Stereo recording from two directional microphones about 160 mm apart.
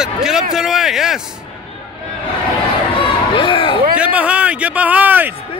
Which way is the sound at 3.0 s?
30° left (ahead or behind).